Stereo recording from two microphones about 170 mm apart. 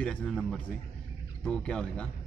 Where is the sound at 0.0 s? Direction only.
5° left (ahead or behind).